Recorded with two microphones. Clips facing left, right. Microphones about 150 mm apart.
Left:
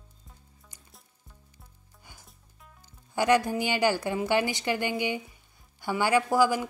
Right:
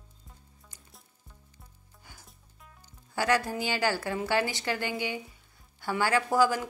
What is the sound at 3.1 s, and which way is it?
A woman's voice, 20° left (ahead or behind).